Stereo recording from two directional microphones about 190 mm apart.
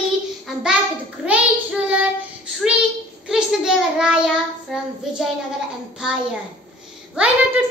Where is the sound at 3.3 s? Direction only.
5° right (ahead or behind).